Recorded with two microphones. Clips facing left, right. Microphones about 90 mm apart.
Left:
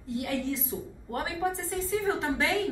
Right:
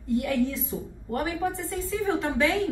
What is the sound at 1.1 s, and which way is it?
A woman's voice, 20° left (ahead or behind).